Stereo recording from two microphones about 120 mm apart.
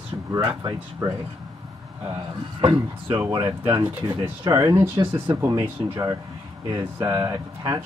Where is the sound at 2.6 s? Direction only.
45° right (ahead or behind).